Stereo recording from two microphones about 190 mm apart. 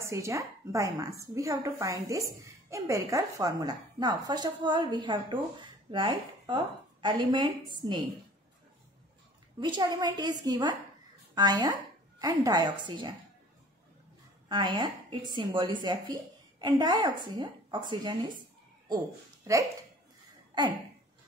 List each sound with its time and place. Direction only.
0.0 s a woman's voice: 15° right (ahead or behind)
9.6 s a woman's voice: 25° right (ahead or behind)
14.5 s a woman's voice: 25° right (ahead or behind)
19.4 s speech: 15° right (ahead or behind)